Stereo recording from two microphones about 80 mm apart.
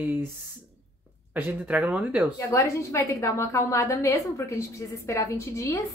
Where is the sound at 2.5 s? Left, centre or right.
Left.